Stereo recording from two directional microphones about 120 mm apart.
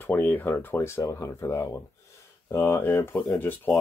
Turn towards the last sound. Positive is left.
turn(degrees=15)  # may be behind; listen again after turning